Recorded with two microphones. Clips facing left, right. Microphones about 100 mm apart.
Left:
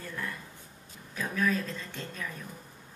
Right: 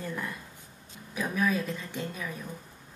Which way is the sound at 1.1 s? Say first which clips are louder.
Right 1 dB; 15° right (ahead or behind).